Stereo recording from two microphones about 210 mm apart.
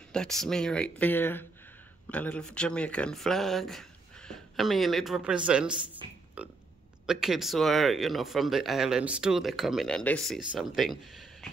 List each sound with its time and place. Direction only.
0.1 s speech: 5° left (ahead or behind)